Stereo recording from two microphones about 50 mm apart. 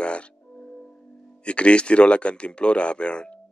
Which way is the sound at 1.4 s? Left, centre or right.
Left.